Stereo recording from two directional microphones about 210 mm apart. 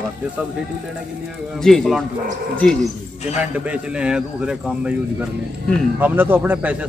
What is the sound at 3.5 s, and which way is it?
Speech, 5° right (ahead or behind).